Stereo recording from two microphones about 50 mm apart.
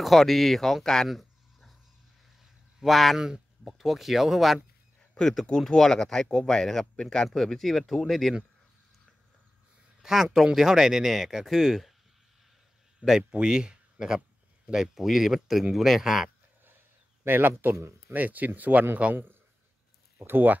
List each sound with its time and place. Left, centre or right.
0.0 s speech: centre
1.0 s a sound: centre
2.8 s speech: centre
3.2 s speech: centre
3.6 s speech: centre
5.7 s speech: centre
10.0 s speech: centre
13.3 s speech: centre
17.2 s a man's voice: right
17.7 s speech: right
18.1 s speech: right
20.2 s speech: right